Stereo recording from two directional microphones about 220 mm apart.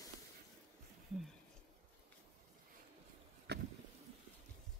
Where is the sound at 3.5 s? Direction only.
50° right (ahead or behind).